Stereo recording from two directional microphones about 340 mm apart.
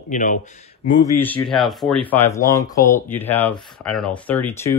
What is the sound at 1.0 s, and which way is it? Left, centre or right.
Speech, centre.